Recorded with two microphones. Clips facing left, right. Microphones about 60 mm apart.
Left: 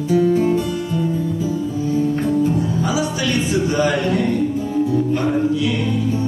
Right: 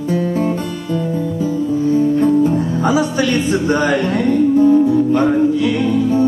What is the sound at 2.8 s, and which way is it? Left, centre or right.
Music, right.